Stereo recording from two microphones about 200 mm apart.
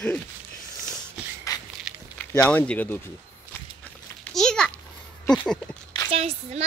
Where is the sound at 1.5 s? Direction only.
20° left (ahead or behind).